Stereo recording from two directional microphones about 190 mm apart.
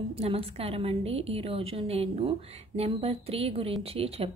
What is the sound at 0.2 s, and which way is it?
Speech, 30° right (ahead or behind).